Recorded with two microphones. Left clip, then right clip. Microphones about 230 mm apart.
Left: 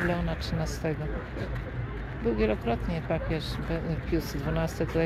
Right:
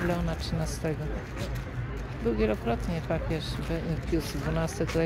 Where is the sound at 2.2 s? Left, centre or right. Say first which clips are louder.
Even; centre.